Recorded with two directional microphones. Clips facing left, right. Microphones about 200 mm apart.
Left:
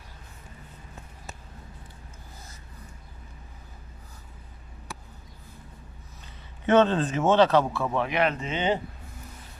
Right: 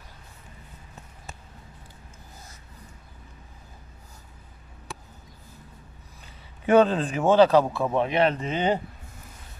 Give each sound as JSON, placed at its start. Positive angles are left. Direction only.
{"t": 6.6, "sound": "speech", "side_deg": -10}